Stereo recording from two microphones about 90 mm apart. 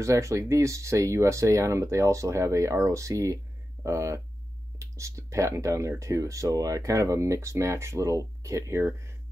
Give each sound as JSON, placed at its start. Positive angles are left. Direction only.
{"t": 0.0, "sound": "speech", "side_deg": -35}